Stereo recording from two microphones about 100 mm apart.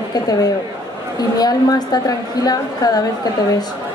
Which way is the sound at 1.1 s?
40° left (ahead or behind).